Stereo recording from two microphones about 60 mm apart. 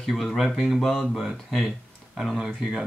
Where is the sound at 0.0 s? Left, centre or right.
Centre.